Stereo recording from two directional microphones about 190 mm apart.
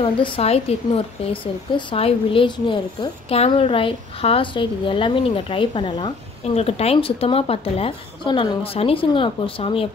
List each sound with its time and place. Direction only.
0.0 s speech: 30° left (ahead or behind)